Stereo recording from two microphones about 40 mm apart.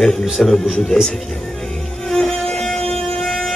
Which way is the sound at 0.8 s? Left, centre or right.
Centre.